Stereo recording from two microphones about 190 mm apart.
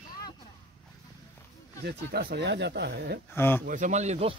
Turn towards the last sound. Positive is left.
turn(degrees=-35)  # may be behind; listen again after turning